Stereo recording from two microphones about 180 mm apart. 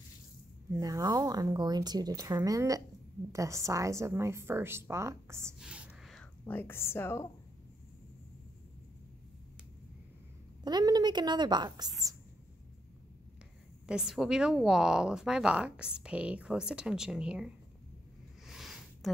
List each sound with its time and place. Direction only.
0.7 s speech: 20° right (ahead or behind)
5.6 s whispering: 5° right (ahead or behind)
6.4 s a woman's voice: 10° left (ahead or behind)
10.6 s speech: 20° right (ahead or behind)
13.8 s a woman's voice: 5° right (ahead or behind)
18.5 s a sound: centre (ahead or behind)